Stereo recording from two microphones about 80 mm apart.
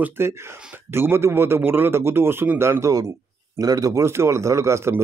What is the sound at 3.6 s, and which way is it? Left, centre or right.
Speech, right.